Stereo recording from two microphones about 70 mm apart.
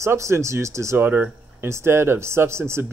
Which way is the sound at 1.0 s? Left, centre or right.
Right.